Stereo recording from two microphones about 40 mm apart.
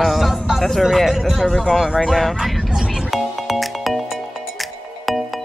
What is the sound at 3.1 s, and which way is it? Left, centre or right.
Music, centre.